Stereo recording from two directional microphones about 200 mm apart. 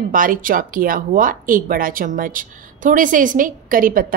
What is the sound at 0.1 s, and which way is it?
Speech, 45° right (ahead or behind).